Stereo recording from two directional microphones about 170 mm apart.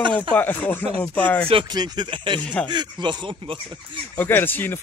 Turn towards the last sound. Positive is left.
turn(degrees=10)  # may be behind; listen again after turning